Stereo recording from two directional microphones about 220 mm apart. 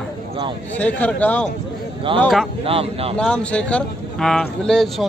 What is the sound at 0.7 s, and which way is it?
A man's voice, 5° left (ahead or behind).